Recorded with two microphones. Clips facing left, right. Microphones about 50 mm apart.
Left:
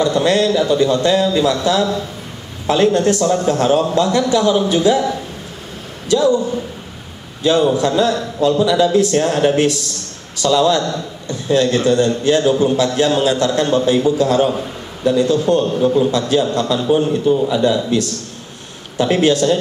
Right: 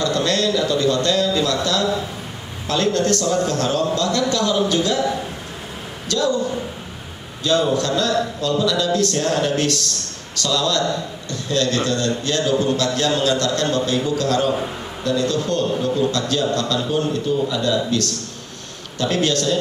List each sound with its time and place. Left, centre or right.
0.0 s a man's voice: centre
6.0 s a man's voice: centre
7.4 s a man's voice: centre